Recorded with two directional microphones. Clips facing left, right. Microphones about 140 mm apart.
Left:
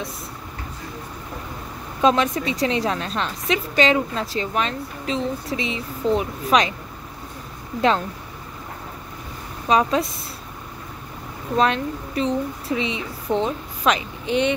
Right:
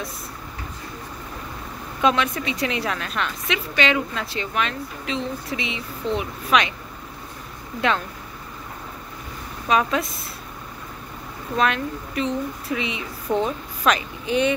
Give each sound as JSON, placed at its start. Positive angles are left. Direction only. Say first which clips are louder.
{"t": 2.0, "sound": "a woman's voice", "louder": "left 3 dB", "side_deg": 35}
{"t": 9.7, "sound": "a woman's voice", "louder": "left 2 dB", "side_deg": 30}
{"t": 11.5, "sound": "a woman's voice", "louder": "left 2 dB", "side_deg": 30}